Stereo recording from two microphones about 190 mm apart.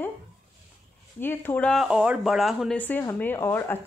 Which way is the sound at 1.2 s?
10° left (ahead or behind).